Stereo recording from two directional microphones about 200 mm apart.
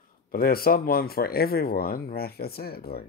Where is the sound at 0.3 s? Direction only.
50° left (ahead or behind).